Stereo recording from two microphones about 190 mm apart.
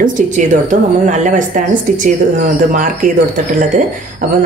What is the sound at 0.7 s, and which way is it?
Speech, 40° right (ahead or behind).